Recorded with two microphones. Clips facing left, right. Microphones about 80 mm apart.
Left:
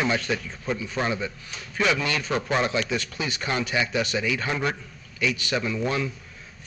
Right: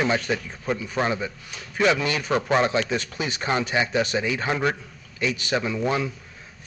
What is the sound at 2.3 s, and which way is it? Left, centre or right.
Speech, right.